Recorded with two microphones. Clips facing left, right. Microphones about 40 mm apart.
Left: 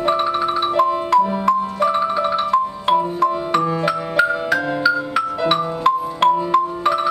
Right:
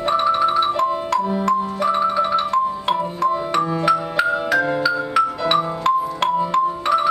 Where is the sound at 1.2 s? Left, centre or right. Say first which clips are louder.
Left 2 dB; centre.